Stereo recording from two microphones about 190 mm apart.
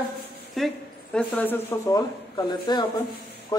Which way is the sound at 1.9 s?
20° left (ahead or behind).